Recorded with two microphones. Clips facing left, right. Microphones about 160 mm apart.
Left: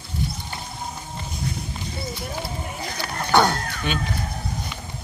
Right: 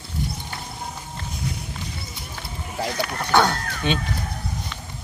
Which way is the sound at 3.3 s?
5° left (ahead or behind).